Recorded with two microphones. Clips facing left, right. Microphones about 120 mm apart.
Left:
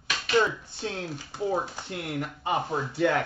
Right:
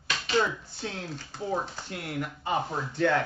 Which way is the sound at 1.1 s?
15° left (ahead or behind).